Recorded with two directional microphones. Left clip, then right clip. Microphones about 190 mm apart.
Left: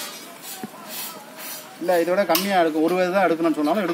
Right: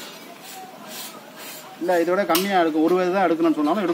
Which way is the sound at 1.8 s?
35° left (ahead or behind).